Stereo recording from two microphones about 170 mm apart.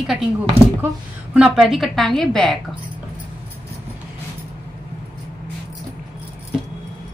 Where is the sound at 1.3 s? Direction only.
5° right (ahead or behind).